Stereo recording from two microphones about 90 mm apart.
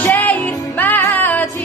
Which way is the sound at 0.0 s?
20° left (ahead or behind).